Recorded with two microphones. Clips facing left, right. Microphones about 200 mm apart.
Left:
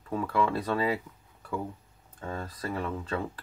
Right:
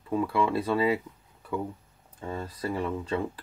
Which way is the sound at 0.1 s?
10° right (ahead or behind).